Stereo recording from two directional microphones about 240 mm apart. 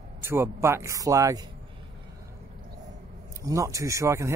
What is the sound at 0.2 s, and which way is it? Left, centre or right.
Speech, centre.